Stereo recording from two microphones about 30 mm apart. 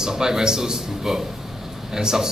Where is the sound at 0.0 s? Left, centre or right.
Centre.